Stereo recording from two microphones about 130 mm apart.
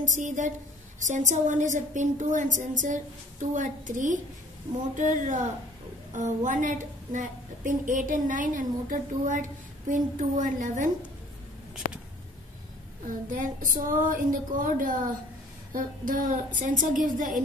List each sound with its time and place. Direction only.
0.0 s a woman's voice: 75° right (ahead or behind)
11.8 s a sound: 75° left (ahead or behind)
13.3 s female singing: 90° right